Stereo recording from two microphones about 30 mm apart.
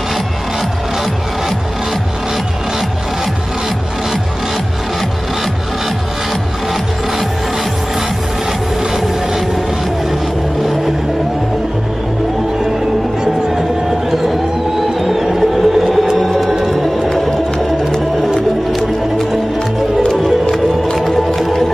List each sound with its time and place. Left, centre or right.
8.9 s music: centre
13.6 s music: centre
15.3 s a sound: centre
20.4 s music: left